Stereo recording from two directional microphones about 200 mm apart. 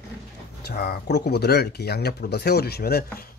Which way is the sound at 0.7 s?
55° left (ahead or behind).